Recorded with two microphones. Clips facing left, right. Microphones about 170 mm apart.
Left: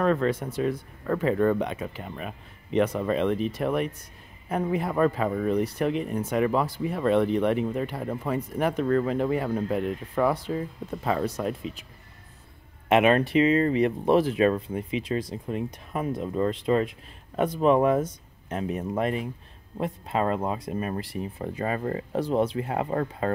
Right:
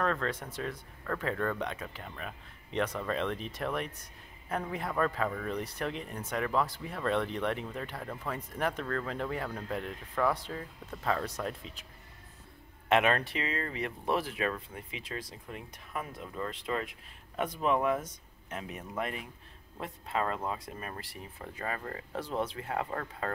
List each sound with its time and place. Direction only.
0.0 s speech: 15° left (ahead or behind)
12.8 s speech: 15° left (ahead or behind)